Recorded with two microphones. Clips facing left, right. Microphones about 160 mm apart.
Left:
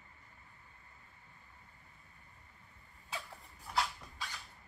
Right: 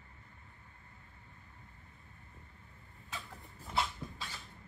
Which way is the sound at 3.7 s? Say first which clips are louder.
Right 1 dB; centre (ahead or behind).